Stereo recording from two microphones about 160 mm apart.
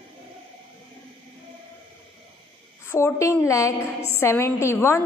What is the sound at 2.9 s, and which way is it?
A woman's voice, 15° left (ahead or behind).